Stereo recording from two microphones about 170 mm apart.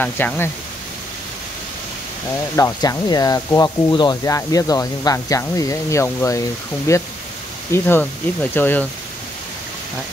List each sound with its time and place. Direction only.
0.0 s speech: 10° left (ahead or behind)
2.5 s speech: 20° left (ahead or behind)